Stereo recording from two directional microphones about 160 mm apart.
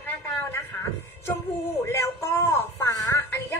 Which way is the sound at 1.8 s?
15° left (ahead or behind).